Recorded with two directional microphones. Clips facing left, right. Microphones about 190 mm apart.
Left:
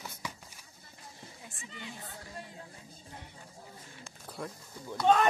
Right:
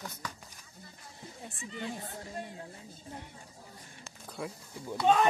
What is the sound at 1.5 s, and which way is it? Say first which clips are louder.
Speech: right 8 dB; 40° right (ahead or behind).